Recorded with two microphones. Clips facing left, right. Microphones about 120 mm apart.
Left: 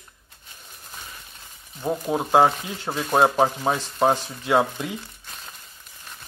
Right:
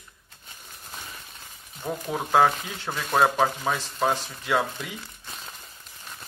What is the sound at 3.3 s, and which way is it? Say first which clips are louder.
Speech: left 3 dB; 25° left (ahead or behind).